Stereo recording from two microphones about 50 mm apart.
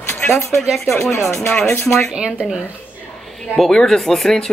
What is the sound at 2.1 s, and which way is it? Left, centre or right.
Speech, right.